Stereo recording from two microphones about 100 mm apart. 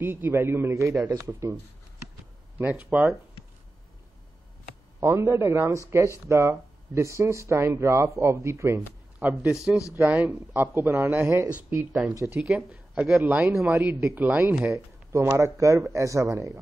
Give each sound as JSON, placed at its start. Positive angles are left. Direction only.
{"t": 0.0, "sound": "speech", "side_deg": -20}
{"t": 2.6, "sound": "speech", "side_deg": -15}
{"t": 5.0, "sound": "speech", "side_deg": -25}
{"t": 9.5, "sound": "speech", "side_deg": -10}
{"t": 9.9, "sound": "speech", "side_deg": -25}
{"t": 12.3, "sound": "speech", "side_deg": -15}
{"t": 13.7, "sound": "speech", "side_deg": -25}